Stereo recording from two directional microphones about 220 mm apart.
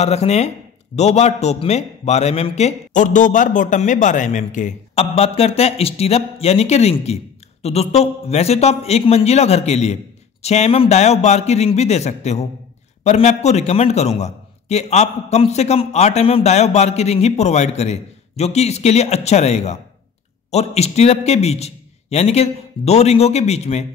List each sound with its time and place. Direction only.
0.0 s a man's voice: 30° left (ahead or behind)